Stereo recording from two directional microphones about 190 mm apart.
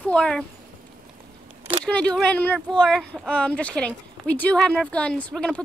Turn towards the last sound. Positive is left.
turn(degrees=5)  # may be behind; listen again after turning